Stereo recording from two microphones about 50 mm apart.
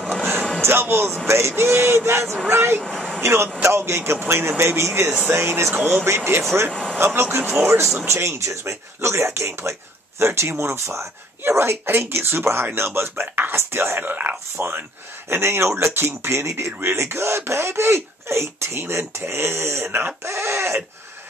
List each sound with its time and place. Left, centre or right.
0.6 s music: right
1.2 s speech: right
2.8 s a sound: centre
3.2 s speech: right
6.0 s speech: right
6.7 s speech: centre
7.2 s speech: right
7.6 s speech: right
13.2 s speech: right
13.6 s speech: right